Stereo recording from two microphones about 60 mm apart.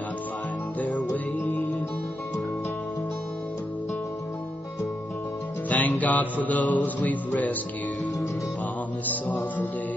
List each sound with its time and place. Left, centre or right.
0.7 s music: left
5.7 s music: left
9.0 s music: left